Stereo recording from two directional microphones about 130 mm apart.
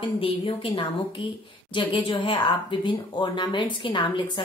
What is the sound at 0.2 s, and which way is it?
A woman's voice, 45° left (ahead or behind).